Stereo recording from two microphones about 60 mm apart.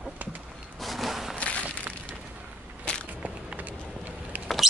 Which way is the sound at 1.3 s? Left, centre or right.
Left.